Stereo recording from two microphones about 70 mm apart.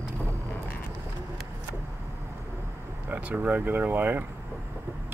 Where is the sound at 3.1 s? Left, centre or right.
Right.